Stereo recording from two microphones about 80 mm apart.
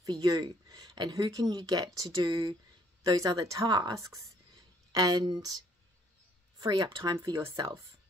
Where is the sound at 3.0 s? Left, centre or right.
Right.